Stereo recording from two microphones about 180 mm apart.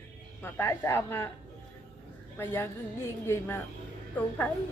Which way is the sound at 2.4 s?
10° left (ahead or behind).